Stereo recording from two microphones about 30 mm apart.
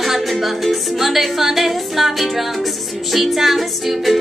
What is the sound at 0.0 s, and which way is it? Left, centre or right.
Music, centre.